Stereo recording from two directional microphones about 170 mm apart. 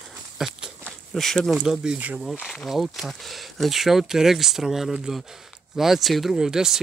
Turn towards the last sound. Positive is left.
turn(degrees=-5)  # may be behind; listen again after turning